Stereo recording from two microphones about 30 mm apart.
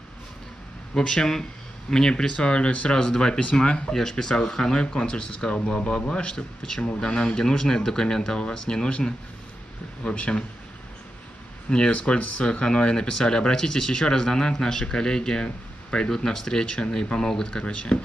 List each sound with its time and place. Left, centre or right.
0.9 s speech: left
2.3 s speech: left
4.1 s speech: left
10.0 s speech: left
11.9 s speech: left; by 17.6 s centre
17.6 s speech: left